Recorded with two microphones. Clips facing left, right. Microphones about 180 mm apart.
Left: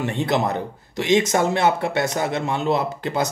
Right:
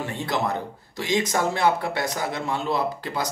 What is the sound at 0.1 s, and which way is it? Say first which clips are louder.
Speech: left 3 dB; 20° left (ahead or behind).